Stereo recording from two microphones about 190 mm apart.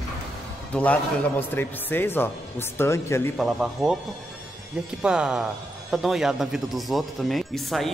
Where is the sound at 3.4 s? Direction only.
Centre (ahead or behind).